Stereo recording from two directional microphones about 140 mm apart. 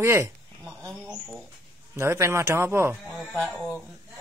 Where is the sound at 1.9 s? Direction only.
20° right (ahead or behind).